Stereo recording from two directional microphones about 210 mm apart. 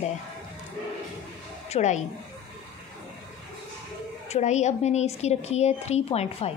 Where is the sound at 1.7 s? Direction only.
35° left (ahead or behind).